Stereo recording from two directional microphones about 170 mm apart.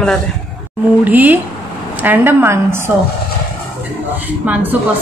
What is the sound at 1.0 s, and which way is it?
A woman's voice, 10° right (ahead or behind).